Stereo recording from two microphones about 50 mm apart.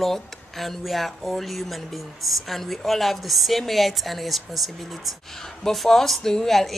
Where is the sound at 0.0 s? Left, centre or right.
Centre.